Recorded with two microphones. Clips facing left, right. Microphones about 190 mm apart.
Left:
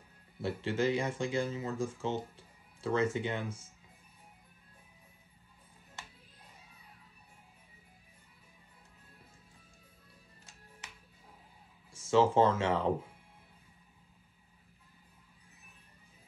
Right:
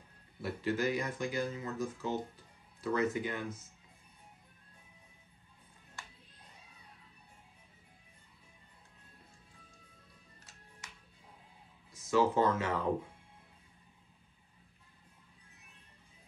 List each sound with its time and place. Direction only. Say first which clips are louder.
0.4 s speech: left 2 dB; 25° left (ahead or behind)
11.9 s speech: left 3 dB; 25° left (ahead or behind)